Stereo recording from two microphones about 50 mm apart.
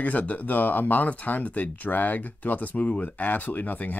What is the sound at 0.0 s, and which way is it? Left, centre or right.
Speech, left.